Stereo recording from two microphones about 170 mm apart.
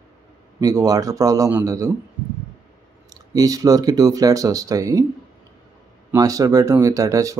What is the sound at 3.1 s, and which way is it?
Speech, 20° right (ahead or behind).